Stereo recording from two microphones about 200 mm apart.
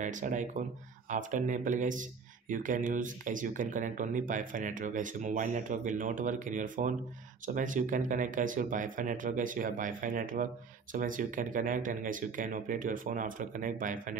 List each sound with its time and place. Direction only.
0.0 s speech: 40° right (ahead or behind)